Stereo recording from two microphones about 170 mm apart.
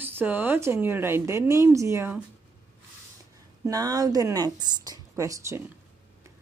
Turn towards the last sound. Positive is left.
turn(degrees=-20)  # may be behind; listen again after turning